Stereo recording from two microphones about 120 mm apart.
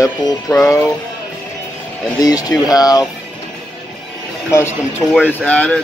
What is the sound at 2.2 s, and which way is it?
Speech, 30° left (ahead or behind).